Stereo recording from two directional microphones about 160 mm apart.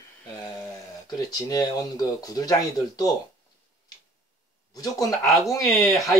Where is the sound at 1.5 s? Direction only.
25° left (ahead or behind).